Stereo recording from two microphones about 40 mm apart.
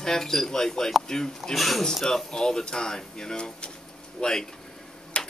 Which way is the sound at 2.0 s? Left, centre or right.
Centre.